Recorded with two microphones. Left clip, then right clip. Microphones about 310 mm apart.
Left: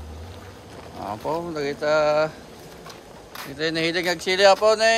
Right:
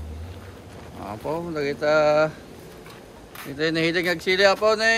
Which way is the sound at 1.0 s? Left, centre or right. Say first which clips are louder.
Left 2 dB; centre.